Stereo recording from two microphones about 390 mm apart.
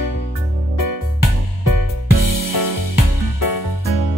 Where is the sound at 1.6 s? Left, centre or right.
Left.